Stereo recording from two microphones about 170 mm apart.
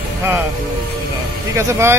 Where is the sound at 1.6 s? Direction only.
15° right (ahead or behind).